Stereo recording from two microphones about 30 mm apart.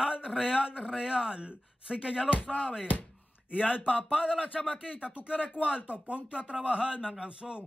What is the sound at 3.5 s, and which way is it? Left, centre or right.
Speech, left.